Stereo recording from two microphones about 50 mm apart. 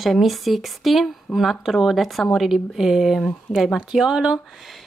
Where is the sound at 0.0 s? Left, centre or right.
Centre.